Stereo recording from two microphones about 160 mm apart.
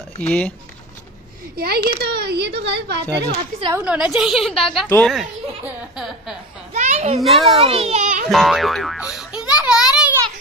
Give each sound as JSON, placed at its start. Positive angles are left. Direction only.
{"t": 0.2, "sound": "speech", "side_deg": 10}
{"t": 1.6, "sound": "speech", "side_deg": -80}
{"t": 3.7, "sound": "a child's voice", "side_deg": -5}
{"t": 6.7, "sound": "children playing", "side_deg": -45}
{"t": 7.2, "sound": "a child's voice", "side_deg": 0}
{"t": 7.6, "sound": "a child's voice", "side_deg": -40}
{"t": 8.3, "sound": "a child's voice", "side_deg": 0}